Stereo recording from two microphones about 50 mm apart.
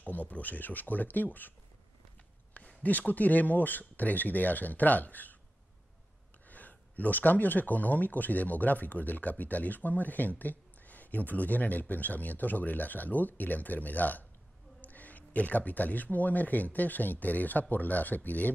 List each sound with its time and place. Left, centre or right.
0.0 s speech: left
2.8 s speech: left
6.5 s speech: left